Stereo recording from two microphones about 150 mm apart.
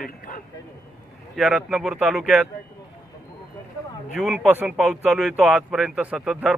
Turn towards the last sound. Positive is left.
turn(degrees=-5)  # may be behind; listen again after turning